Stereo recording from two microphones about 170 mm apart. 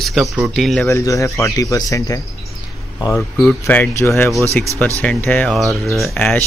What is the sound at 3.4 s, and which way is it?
Speech, 10° left (ahead or behind).